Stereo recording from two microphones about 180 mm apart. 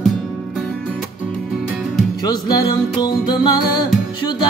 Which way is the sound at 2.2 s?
20° left (ahead or behind).